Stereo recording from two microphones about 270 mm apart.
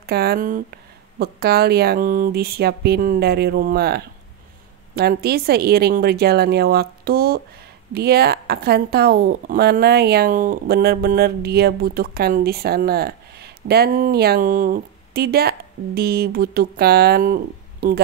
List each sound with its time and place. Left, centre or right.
0.0 s a woman's voice: right